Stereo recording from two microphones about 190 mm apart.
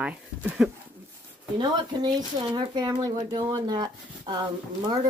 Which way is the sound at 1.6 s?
20° right (ahead or behind).